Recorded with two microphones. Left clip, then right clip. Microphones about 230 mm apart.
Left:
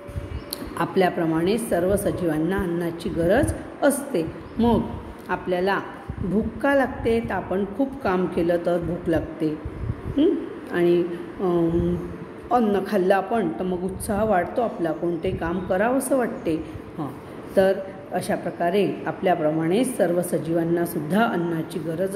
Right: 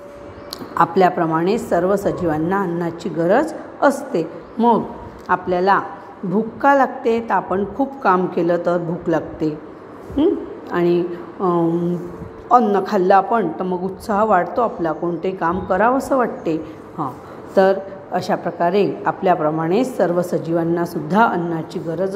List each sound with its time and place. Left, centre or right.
0.7 s a woman's voice: centre
10.1 s a sound: centre
12.4 s a woman's voice: centre
17.6 s a woman's voice: centre